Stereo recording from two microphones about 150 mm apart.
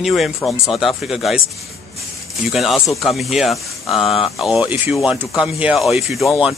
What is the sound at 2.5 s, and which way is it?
Speech, centre (ahead or behind).